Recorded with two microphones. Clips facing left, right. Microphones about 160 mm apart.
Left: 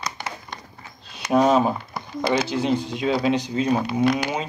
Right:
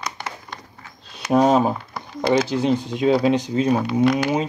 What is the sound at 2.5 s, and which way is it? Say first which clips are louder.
Speech: right 2 dB; 45° right (ahead or behind).